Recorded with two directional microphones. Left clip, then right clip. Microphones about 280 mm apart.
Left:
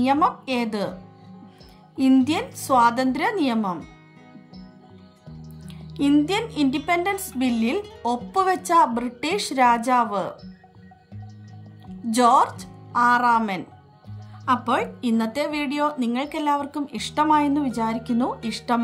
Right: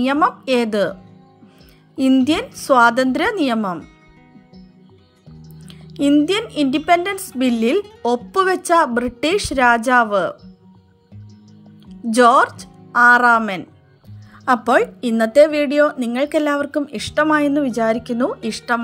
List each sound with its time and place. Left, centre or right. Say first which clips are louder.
0.0 s a woman's voice: right 3 dB; centre
2.0 s a woman's voice: right 4 dB; centre
5.4 s a woman's voice: right 3 dB; centre
11.9 s a woman's voice: right 5 dB; centre